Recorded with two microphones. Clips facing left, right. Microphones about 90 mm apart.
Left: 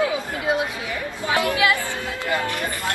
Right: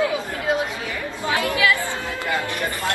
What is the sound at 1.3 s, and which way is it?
Speech, 20° left (ahead or behind).